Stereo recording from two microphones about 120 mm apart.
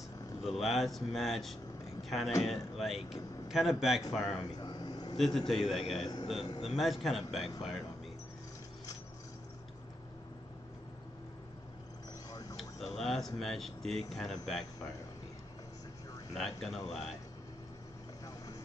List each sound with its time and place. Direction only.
0.4 s speech: centre (ahead or behind)
4.4 s air conditioning: 40° left (ahead or behind)
5.1 s a man's voice: centre (ahead or behind)
12.3 s a sound: 30° left (ahead or behind)
12.5 s speech: centre (ahead or behind)
16.3 s speech: centre (ahead or behind)